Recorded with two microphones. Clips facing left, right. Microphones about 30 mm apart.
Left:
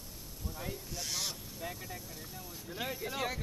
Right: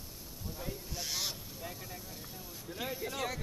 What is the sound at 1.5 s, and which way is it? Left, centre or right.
Vehicle, centre.